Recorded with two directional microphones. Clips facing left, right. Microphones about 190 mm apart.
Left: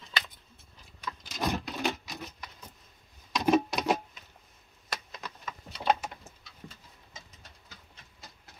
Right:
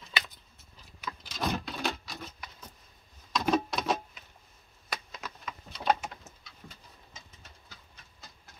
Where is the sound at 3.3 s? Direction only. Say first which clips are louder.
Left 3 dB; 15° left (ahead or behind).